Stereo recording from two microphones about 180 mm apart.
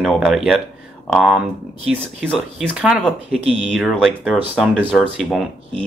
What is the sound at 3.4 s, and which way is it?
Speech, 35° right (ahead or behind).